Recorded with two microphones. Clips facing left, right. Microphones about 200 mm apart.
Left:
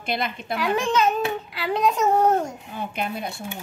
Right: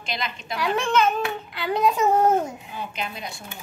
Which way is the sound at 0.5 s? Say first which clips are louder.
Even; centre (ahead or behind).